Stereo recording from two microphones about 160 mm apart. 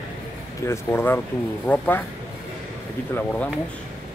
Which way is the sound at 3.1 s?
10° left (ahead or behind).